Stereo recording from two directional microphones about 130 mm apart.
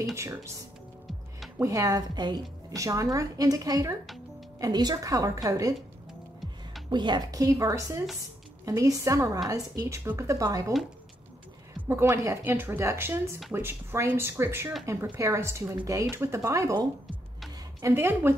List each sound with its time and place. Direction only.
0.1 s a woman's voice: 25° right (ahead or behind)
1.6 s a woman's voice: 25° right (ahead or behind)
6.9 s a woman's voice: 35° right (ahead or behind)
11.9 s a woman's voice: 20° right (ahead or behind)
17.8 s speech: 15° right (ahead or behind)